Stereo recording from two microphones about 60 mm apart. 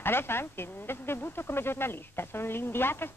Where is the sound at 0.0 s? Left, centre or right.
Left.